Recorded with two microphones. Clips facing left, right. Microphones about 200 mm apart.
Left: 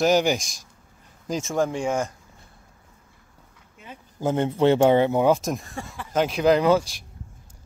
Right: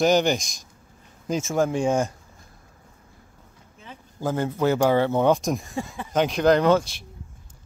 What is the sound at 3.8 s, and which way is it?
Speech, 20° left (ahead or behind).